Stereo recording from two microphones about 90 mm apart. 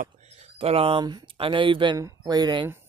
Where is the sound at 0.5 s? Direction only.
90° right.